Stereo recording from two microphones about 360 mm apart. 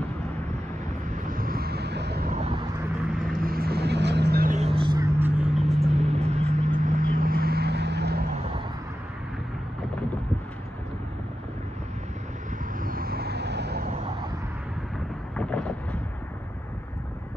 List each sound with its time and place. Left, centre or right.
1.3 s vehicle: right; by 5.8 s centre
5.8 s vehicle: centre
12.8 s vehicle: right
15.3 s a sound: centre